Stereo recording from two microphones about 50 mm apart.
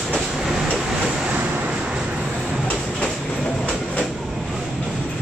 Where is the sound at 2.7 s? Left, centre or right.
Left.